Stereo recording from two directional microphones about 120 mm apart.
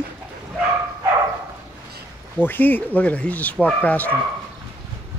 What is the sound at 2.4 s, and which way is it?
Speech, 15° left (ahead or behind).